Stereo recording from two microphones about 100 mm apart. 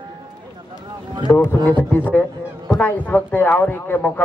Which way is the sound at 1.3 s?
30° left (ahead or behind).